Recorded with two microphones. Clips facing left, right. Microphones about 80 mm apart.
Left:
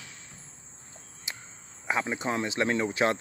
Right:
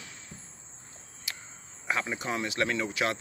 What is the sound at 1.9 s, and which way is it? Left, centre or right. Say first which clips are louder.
Speech: left 2 dB; left.